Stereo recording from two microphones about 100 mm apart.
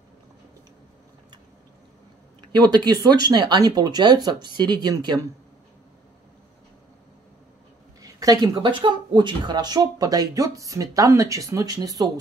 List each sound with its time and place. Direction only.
2.4 s speech: 45° right (ahead or behind)
8.0 s speech: 40° right (ahead or behind)